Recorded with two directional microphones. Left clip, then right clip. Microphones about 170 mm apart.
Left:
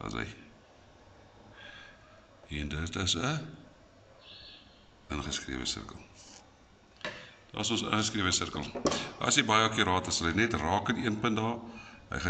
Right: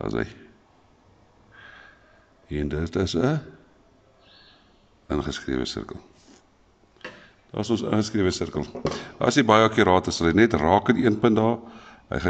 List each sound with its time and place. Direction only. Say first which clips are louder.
0.0 s speech: right 9 dB; 50° right (ahead or behind)
1.6 s a sound: right 3 dB; 45° right (ahead or behind)
2.5 s speech: right 10 dB; 45° right (ahead or behind)
5.0 s speech: right 8 dB; 50° right (ahead or behind)
7.5 s speech: right 6 dB; 45° right (ahead or behind)